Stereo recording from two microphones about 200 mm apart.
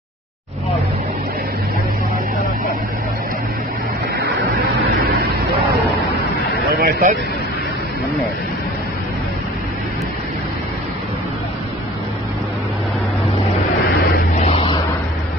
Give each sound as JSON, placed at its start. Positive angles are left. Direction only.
{"t": 6.6, "sound": "a sound", "side_deg": -50}
{"t": 13.9, "sound": "vehicle", "side_deg": 50}
{"t": 14.4, "sound": "vehicle", "side_deg": 30}